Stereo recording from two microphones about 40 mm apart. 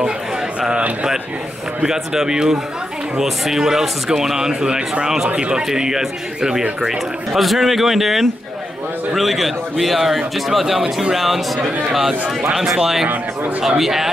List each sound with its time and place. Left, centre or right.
0.6 s a sound: right
1.8 s speech: centre
5.7 s speech: centre
7.3 s a man's voice: centre